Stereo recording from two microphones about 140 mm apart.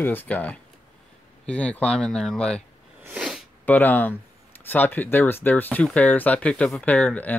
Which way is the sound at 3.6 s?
10° left (ahead or behind).